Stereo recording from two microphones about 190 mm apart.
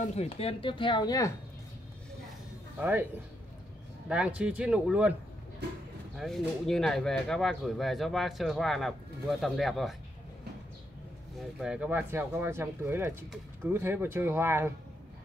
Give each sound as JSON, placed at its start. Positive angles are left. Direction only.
{"t": 0.0, "sound": "speech", "side_deg": 35}
{"t": 2.8, "sound": "speech", "side_deg": -10}
{"t": 4.1, "sound": "speech", "side_deg": -5}
{"t": 6.1, "sound": "speech", "side_deg": 0}
{"t": 11.3, "sound": "speech", "side_deg": -5}